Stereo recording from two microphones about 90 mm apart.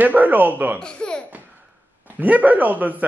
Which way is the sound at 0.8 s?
10° left (ahead or behind).